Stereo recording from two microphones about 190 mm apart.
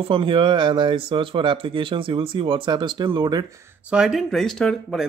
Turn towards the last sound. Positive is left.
turn(degrees=0)  # may be behind; listen again after turning